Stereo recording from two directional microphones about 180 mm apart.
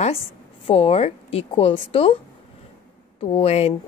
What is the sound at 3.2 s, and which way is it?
Speech, 30° left (ahead or behind).